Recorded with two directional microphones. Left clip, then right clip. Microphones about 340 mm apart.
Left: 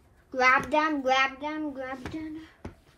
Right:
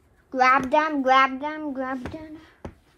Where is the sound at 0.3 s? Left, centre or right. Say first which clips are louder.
Right 4 dB; centre.